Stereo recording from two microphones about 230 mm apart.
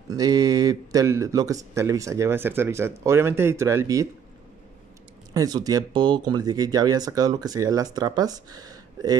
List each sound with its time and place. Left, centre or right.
0.1 s speech: centre
5.3 s speech: centre